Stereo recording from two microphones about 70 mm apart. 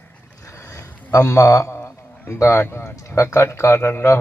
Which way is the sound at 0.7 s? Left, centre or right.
Left.